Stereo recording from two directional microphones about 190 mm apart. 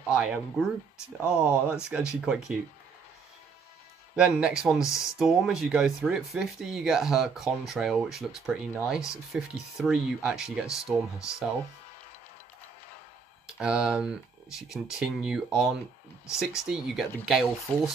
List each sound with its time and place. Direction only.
0.1 s speech: 5° right (ahead or behind)
4.1 s speech: 5° right (ahead or behind)
13.5 s speech: 5° right (ahead or behind)